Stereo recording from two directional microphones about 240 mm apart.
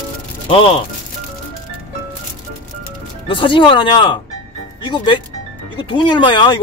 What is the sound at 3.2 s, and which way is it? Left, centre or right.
Speech, left.